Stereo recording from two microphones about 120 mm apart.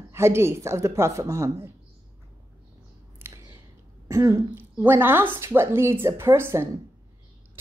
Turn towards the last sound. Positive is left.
turn(degrees=-20)  # may be behind; listen again after turning